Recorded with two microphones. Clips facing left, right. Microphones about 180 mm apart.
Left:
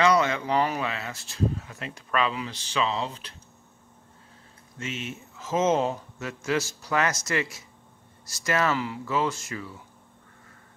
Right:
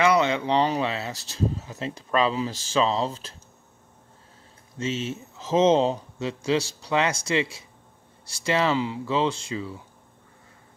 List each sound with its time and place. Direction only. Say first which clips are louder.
0.0 s speech: right 1 dB; 20° right (ahead or behind); by 3.2 s 35° right (ahead or behind)
4.8 s speech: right 6 dB; 35° right (ahead or behind)
8.6 s speech: right 3 dB; 20° right (ahead or behind)